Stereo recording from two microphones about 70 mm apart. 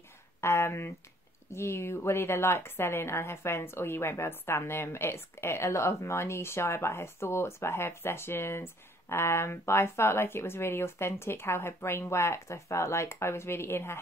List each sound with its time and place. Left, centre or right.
0.4 s a woman's voice: left